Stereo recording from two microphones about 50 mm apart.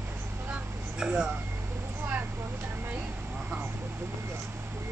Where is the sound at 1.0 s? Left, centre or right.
Centre.